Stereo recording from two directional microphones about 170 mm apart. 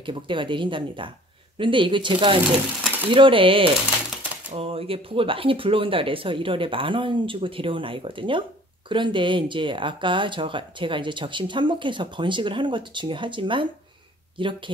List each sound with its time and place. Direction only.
0.0 s speech: 30° right (ahead or behind)